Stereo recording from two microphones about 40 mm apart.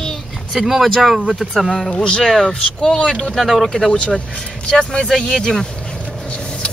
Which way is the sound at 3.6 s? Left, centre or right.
Centre.